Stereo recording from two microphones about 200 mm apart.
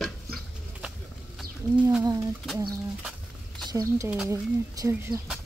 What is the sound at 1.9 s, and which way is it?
Speech, 15° right (ahead or behind).